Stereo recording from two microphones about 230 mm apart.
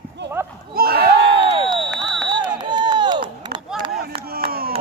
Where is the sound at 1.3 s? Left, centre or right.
Right.